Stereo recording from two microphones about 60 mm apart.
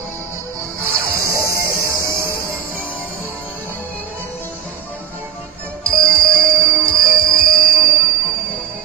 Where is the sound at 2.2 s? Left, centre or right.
Right.